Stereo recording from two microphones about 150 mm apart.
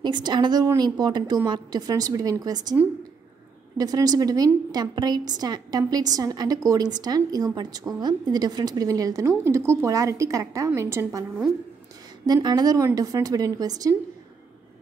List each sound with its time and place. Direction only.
0.0 s a woman's voice: 30° right (ahead or behind)
3.7 s a woman's voice: 25° right (ahead or behind)
12.3 s a woman's voice: 25° right (ahead or behind)